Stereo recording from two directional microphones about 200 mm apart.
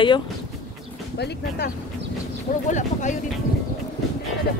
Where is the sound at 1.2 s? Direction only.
55° left (ahead or behind).